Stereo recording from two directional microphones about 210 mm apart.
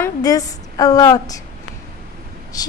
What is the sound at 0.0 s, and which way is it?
A woman's voice, 15° left (ahead or behind).